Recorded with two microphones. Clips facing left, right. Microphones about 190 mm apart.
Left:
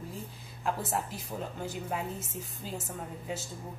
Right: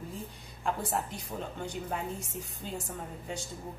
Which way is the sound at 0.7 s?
Centre (ahead or behind).